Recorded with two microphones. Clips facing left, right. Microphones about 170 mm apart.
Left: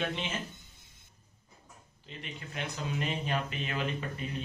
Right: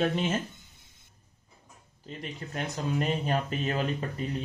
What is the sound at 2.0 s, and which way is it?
Speech, 40° right (ahead or behind).